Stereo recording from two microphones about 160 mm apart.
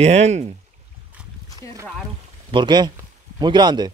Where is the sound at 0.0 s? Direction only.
45° right (ahead or behind).